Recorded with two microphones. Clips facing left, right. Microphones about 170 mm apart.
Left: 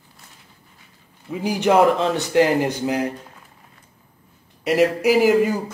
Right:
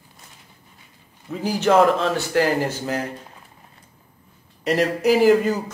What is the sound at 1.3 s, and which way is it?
Speech, 15° left (ahead or behind).